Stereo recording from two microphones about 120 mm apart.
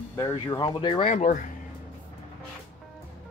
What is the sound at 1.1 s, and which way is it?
Speech, 90° left.